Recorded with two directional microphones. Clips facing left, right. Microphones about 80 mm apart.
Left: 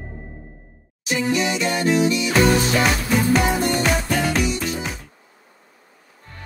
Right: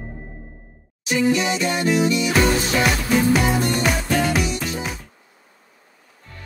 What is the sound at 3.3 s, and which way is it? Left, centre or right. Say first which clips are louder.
Music: left 1 dB; centre.